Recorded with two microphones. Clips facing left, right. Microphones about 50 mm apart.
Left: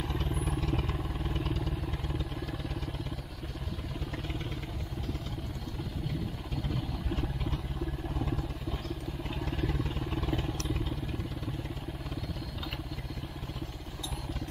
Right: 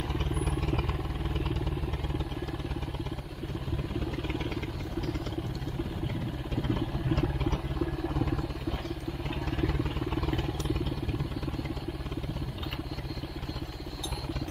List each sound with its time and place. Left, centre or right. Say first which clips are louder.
0.1 s vehicle: right 2 dB; centre
7.2 s vehicle: right 5 dB; right
9.4 s vehicle: right 3 dB; centre